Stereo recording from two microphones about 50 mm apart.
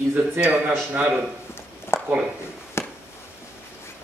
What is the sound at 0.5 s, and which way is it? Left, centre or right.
Speech, right.